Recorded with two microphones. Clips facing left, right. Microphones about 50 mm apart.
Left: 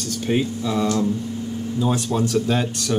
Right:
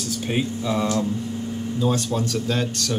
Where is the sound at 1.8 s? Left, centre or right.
Centre.